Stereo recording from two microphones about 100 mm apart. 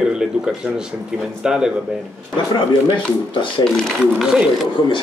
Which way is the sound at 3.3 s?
55° left (ahead or behind).